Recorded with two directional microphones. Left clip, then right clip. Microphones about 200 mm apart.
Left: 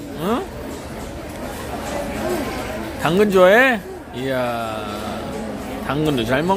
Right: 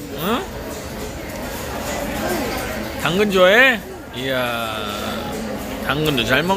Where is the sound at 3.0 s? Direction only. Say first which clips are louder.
Left 1 dB; 25° left (ahead or behind).